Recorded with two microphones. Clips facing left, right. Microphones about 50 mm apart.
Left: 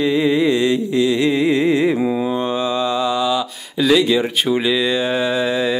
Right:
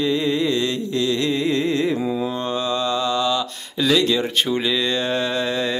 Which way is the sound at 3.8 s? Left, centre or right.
Centre.